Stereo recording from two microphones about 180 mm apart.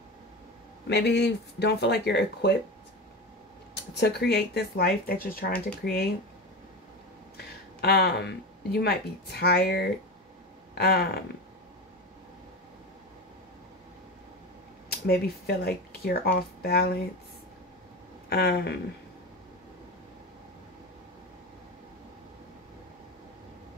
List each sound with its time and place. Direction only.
0.8 s speech: 65° left (ahead or behind)
3.9 s speech: 65° left (ahead or behind)
7.3 s a sound: 60° left (ahead or behind)
8.7 s speech: 60° left (ahead or behind)
10.7 s a sound: 60° left (ahead or behind)
14.9 s speech: 60° left (ahead or behind)
18.3 s speech: 65° left (ahead or behind)